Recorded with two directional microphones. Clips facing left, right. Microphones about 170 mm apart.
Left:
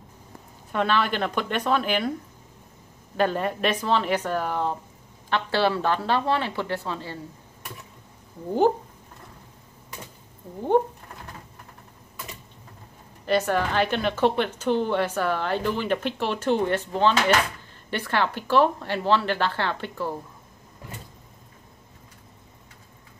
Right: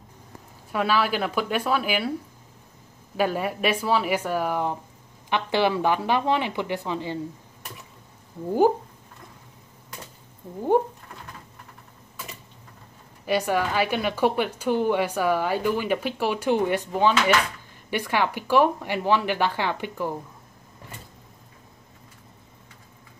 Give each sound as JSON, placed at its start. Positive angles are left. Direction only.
{"t": 0.7, "sound": "speech", "side_deg": -5}
{"t": 3.2, "sound": "speech", "side_deg": -10}
{"t": 10.7, "sound": "speech", "side_deg": -10}
{"t": 13.2, "sound": "speech", "side_deg": -10}